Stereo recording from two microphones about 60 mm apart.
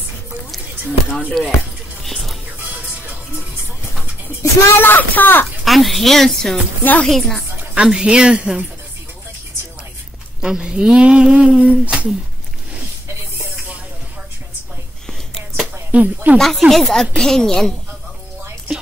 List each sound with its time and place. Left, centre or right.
1.4 s a woman's voice: centre
2.0 s music: centre
4.6 s speech: left
5.7 s a woman's voice: centre
6.8 s a woman's voice: left
7.1 s a woman's voice: centre
7.7 s speech: centre
10.4 s speech: centre
15.9 s speech: right
16.3 s a woman's voice: centre